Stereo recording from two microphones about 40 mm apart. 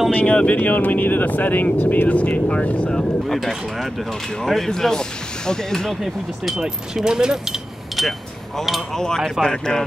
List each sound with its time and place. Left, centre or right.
0.1 s speech: left
0.6 s speech: left
2.0 s speech: left
2.9 s speech: centre
3.3 s speech: centre
4.6 s speech: centre
7.1 s speech: centre
8.0 s a sound: centre
8.9 s speech: centre